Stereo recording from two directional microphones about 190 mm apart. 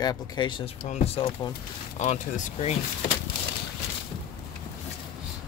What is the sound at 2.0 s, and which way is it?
Speech, 40° left (ahead or behind).